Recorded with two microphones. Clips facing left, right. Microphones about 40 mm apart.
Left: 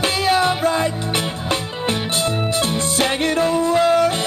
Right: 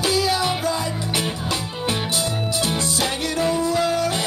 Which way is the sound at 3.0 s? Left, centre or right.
Left.